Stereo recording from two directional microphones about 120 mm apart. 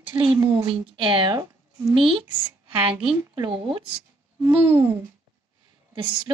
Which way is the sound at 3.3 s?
45° right (ahead or behind).